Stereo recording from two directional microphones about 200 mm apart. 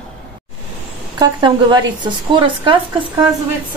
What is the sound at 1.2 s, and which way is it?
Speech, 20° right (ahead or behind).